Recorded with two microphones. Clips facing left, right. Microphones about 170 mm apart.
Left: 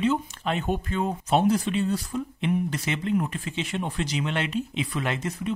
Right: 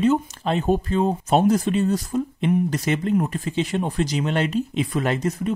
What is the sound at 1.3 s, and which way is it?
Speech, 45° right (ahead or behind).